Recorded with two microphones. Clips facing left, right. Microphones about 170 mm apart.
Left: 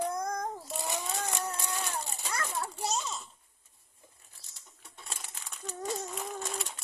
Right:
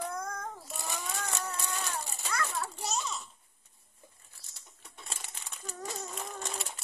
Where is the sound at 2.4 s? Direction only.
25° left (ahead or behind).